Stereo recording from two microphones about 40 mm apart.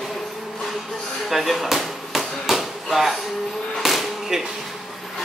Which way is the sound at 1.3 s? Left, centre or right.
Centre.